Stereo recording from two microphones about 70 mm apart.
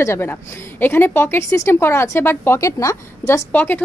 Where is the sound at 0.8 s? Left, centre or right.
Left.